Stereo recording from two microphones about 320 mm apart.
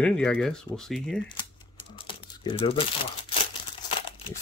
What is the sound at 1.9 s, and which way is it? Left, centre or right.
Crumpling, centre.